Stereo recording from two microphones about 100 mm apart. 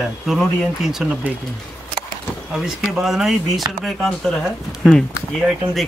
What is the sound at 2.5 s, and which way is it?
Speech, 5° right (ahead or behind).